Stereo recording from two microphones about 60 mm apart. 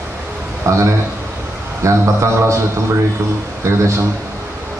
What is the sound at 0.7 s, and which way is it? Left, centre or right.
Speech, right.